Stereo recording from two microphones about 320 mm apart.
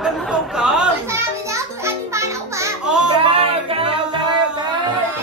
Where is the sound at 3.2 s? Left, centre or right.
Centre.